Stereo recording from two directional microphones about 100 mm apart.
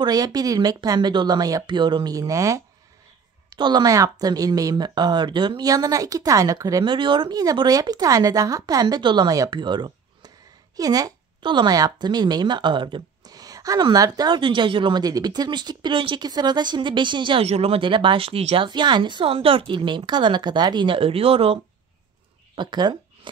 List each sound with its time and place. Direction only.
0.0 s speech: 40° right (ahead or behind)
3.4 s speech: 45° right (ahead or behind)
6.8 s speech: 50° right (ahead or behind)
10.8 s a woman's voice: 35° right (ahead or behind); by 13.3 s 55° right (ahead or behind)
13.3 s a sound: 40° right (ahead or behind)
13.9 s a woman's voice: 40° right (ahead or behind); by 16.3 s 55° right (ahead or behind)
16.3 s a woman's voice: 45° right (ahead or behind)
17.4 s speech: 85° right
18.7 s a woman's voice: 50° right (ahead or behind); by 21.5 s 75° right (ahead or behind)
22.6 s a woman's voice: 45° right (ahead or behind)